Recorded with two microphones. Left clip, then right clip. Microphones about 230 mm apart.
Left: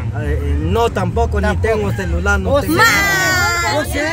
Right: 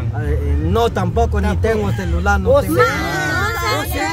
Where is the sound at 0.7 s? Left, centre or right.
Centre.